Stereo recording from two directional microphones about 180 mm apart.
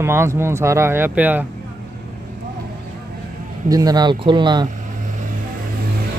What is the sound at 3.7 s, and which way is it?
Speech, 20° right (ahead or behind).